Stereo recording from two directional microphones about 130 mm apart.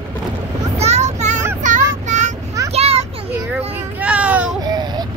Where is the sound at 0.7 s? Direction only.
60° right (ahead or behind).